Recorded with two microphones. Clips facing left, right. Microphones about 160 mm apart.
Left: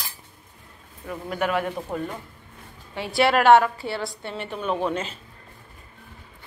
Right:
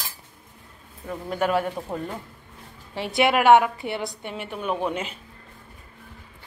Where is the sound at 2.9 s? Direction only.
25° right (ahead or behind).